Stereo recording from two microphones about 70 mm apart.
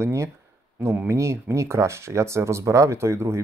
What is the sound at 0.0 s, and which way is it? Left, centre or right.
Speech, right.